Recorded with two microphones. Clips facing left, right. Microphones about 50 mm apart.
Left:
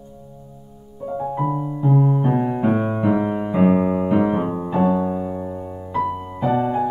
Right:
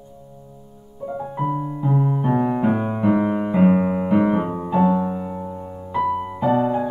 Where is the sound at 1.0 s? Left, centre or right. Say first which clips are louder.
Left 3 dB; centre.